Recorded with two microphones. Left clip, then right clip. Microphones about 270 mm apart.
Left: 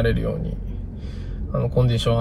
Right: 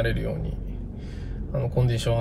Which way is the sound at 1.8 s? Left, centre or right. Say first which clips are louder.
Left 5 dB; centre.